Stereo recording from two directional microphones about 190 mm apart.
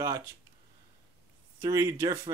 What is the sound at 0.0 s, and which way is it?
Speech, 15° right (ahead or behind).